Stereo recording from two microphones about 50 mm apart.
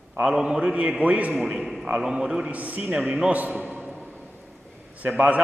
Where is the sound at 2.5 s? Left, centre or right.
Right.